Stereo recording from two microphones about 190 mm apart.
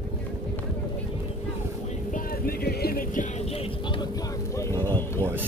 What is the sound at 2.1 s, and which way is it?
Vehicle, 55° left (ahead or behind).